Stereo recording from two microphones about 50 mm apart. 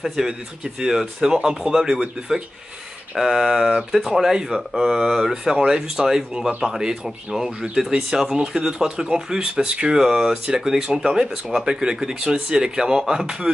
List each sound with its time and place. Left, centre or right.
0.0 s speech: centre